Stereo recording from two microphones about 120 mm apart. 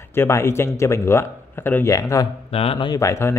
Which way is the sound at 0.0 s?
20° left (ahead or behind).